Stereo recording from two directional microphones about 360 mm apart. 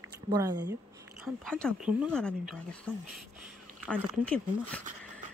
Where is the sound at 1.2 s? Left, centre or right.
Centre.